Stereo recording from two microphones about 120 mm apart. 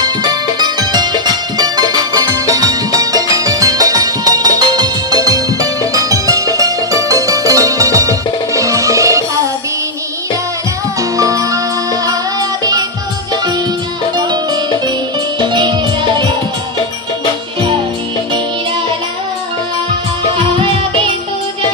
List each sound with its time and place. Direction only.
0.0 s music: 35° right (ahead or behind)
11.0 s music: 25° right (ahead or behind)
14.1 s music: 35° right (ahead or behind)